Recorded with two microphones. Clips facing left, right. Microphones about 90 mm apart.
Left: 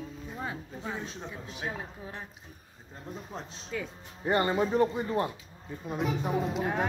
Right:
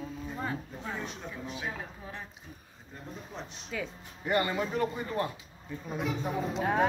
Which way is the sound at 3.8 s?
30° left (ahead or behind).